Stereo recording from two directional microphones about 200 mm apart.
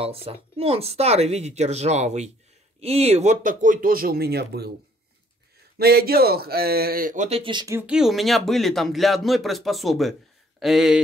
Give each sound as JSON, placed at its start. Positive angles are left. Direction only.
{"t": 0.0, "sound": "speech", "side_deg": -30}
{"t": 5.8, "sound": "speech", "side_deg": -50}
{"t": 7.8, "sound": "speech", "side_deg": -5}